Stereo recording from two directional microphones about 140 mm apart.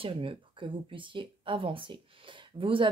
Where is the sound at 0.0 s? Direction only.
40° right (ahead or behind).